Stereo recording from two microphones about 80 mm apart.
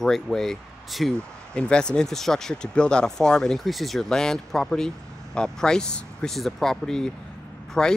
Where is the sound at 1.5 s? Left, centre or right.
Centre.